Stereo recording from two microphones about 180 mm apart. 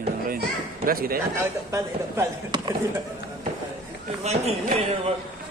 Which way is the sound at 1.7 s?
15° right (ahead or behind).